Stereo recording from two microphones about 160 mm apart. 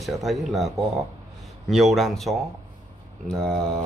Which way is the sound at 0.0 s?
Centre (ahead or behind).